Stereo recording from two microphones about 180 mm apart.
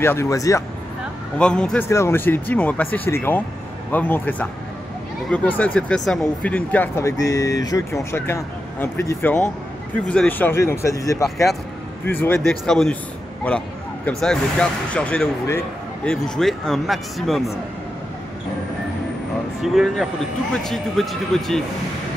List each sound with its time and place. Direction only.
0.0 s speech: 15° left (ahead or behind)
1.4 s speech: 5° left (ahead or behind)
1.9 s speech: 15° left (ahead or behind)
19.6 s speech: centre (ahead or behind)